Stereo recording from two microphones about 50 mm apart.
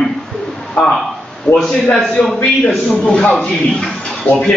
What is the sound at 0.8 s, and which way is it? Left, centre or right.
A man's voice, centre.